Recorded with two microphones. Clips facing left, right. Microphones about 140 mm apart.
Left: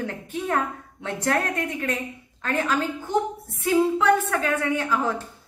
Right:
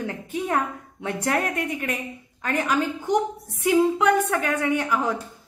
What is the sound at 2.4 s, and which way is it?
A woman's voice, 15° right (ahead or behind).